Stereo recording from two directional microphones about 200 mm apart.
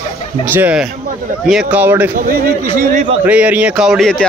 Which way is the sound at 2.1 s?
50° right (ahead or behind).